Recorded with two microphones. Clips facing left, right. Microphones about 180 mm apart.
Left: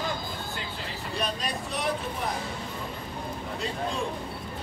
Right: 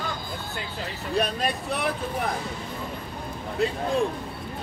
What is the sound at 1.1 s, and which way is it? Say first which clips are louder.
Speech: right 6 dB; 60° right (ahead or behind).